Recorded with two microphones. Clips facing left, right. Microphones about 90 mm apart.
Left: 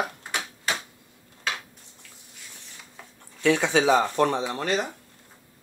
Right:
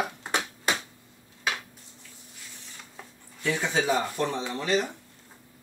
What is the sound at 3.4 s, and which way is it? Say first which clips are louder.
Speech: left 6 dB; 80° left.